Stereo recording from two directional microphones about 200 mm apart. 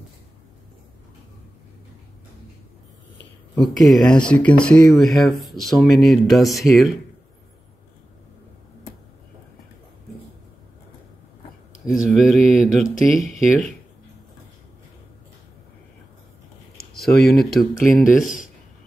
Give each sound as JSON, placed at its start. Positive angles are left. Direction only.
{"t": 3.6, "sound": "speech", "side_deg": 0}
{"t": 12.1, "sound": "speech", "side_deg": 0}
{"t": 16.7, "sound": "speech", "side_deg": 0}
{"t": 18.2, "sound": "speech", "side_deg": 45}